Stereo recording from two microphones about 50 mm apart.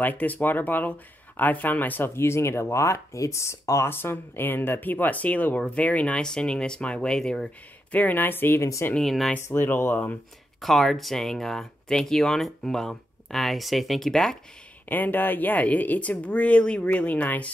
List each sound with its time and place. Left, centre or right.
0.0 s speech: left
3.9 s a woman's voice: left
6.2 s speech: centre
7.9 s a woman's voice: left
8.5 s speech: left
9.0 s speech: centre
9.7 s speech: left
10.6 s speech: centre
14.9 s a woman's voice: left